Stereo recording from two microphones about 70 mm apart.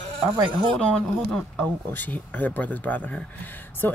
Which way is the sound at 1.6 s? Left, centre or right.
Left.